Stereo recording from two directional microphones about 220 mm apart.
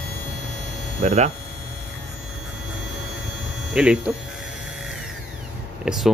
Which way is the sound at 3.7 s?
5° right (ahead or behind).